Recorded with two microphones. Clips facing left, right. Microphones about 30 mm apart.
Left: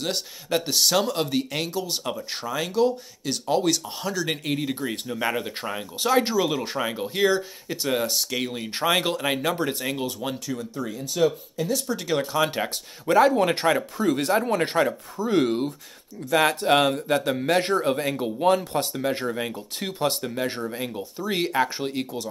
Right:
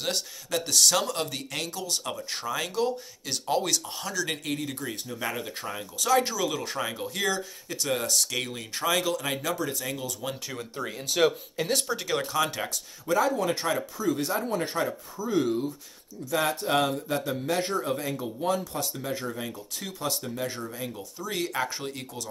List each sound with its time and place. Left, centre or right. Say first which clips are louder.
0.5 s speech: left 5 dB; left
0.7 s speech: left 1 dB; centre
2.0 s speech: left 2 dB; centre
7.2 s speech: left 8 dB; left
8.7 s speech: left 3 dB; left
11.1 s speech: left 1 dB; right
11.5 s speech: left 1 dB; right
12.1 s speech: left 6 dB; centre
12.6 s speech: left 4 dB; left
21.5 s speech: left 6 dB; left